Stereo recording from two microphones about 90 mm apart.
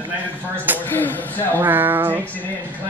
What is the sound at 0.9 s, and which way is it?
Speech, 20° left (ahead or behind).